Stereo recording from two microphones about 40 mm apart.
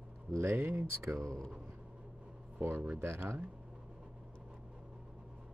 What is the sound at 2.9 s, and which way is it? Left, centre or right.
Speech, right.